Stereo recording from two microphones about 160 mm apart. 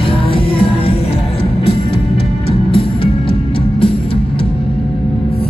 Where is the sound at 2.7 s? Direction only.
35° left (ahead or behind).